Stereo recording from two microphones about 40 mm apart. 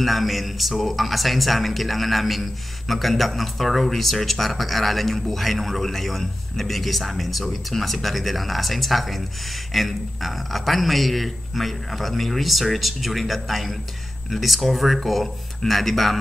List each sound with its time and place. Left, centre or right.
0.0 s a man's voice: centre